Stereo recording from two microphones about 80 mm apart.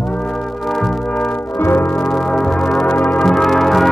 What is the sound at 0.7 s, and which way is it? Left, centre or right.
Brass instrument, centre.